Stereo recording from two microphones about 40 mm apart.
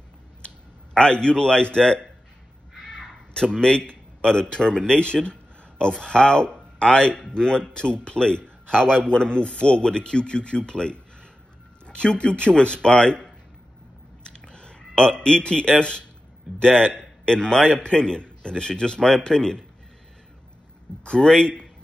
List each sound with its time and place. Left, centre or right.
0.9 s a man's voice: left
14.2 s a sound: left
16.5 s a man's voice: left
21.0 s a man's voice: left